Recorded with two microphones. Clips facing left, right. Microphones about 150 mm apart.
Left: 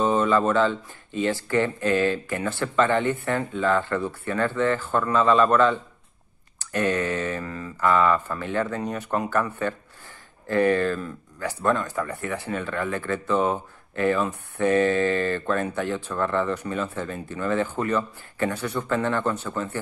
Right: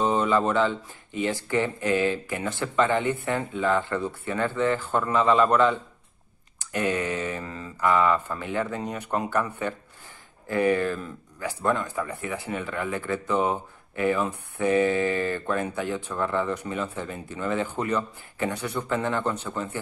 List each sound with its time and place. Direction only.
0.0 s speech: 20° right (ahead or behind)